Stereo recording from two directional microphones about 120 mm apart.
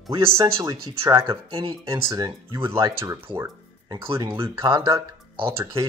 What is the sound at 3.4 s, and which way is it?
Music, 35° right (ahead or behind).